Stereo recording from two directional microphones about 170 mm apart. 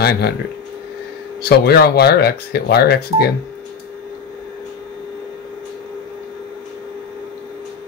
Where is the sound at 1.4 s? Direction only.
70° left (ahead or behind).